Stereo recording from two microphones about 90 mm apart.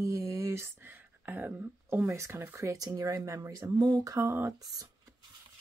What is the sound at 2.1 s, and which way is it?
Speech, 30° right (ahead or behind).